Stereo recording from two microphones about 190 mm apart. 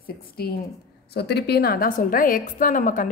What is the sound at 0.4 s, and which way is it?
A woman's voice, 55° left (ahead or behind).